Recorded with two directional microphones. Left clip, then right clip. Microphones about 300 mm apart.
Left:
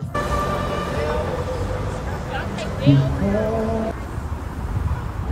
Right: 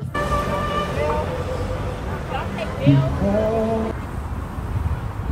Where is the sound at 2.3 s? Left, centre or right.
Centre.